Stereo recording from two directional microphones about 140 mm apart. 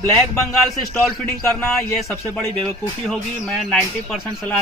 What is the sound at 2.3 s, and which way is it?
A man's voice, 5° left (ahead or behind).